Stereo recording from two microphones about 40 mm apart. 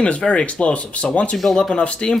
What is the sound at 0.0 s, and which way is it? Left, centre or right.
Speech, left.